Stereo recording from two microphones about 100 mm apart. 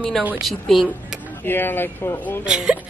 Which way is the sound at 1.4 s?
20° left (ahead or behind).